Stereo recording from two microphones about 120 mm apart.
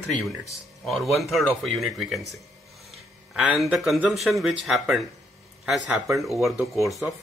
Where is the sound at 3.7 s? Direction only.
Centre (ahead or behind).